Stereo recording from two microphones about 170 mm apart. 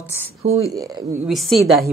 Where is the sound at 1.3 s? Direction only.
Centre (ahead or behind).